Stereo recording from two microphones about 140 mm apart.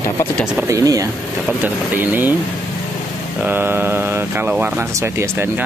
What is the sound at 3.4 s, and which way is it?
Speech, 15° right (ahead or behind).